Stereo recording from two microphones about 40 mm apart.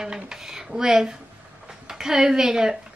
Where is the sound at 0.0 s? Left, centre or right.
Centre.